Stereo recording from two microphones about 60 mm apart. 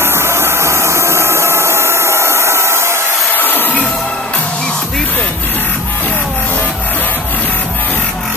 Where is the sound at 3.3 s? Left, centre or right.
Left.